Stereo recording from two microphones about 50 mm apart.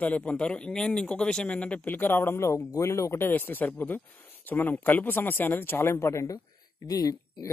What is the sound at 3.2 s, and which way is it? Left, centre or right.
Speech, left.